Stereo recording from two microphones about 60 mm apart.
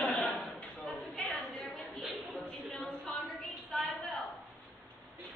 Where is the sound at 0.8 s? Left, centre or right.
Centre.